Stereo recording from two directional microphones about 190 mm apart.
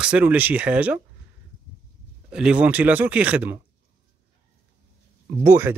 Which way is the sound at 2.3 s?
5° right (ahead or behind).